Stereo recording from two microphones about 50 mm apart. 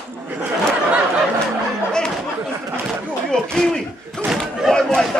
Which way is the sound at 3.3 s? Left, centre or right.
Centre.